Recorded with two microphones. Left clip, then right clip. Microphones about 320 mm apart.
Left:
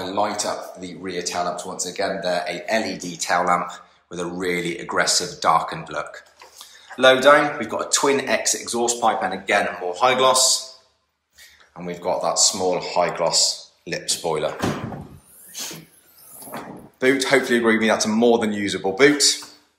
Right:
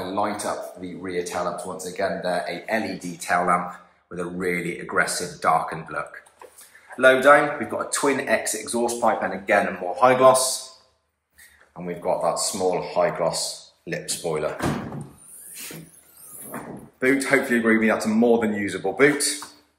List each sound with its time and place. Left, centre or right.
0.1 s speech: centre
11.7 s speech: centre
13.8 s speech: left
14.2 s speech: centre
17.0 s speech: centre